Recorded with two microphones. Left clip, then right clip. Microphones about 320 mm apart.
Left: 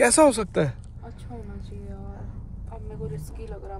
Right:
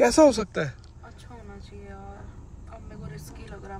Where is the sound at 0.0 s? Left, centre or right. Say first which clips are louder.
Even; left.